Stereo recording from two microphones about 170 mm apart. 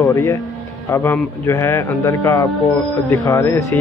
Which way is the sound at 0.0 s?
20° left (ahead or behind).